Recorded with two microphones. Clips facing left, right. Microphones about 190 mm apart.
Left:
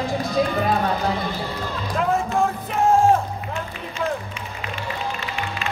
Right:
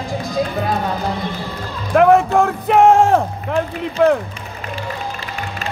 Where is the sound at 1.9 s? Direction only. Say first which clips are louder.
Right 10 dB; 70° right (ahead or behind).